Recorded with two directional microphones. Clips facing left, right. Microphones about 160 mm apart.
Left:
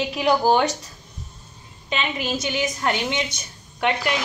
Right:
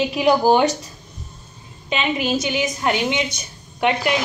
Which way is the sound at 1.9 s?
15° right (ahead or behind).